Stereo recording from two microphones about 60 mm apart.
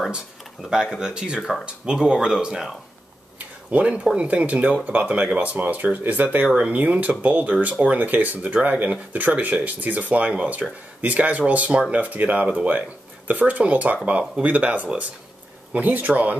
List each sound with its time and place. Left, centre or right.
0.1 s speech: centre
3.3 s speech: right